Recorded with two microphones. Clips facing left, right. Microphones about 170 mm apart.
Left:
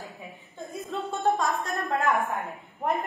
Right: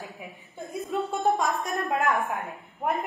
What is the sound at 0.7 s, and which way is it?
A woman's voice, 15° right (ahead or behind).